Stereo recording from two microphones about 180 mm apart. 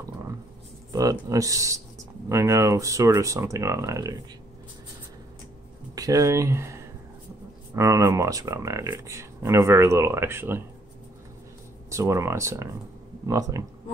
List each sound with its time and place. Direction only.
1.3 s speech: 20° right (ahead or behind)
5.9 s speech: 20° right (ahead or behind)
11.9 s speech: 15° right (ahead or behind)